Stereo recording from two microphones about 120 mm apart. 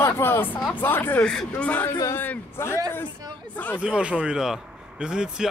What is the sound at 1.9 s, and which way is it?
Speech, 25° left (ahead or behind).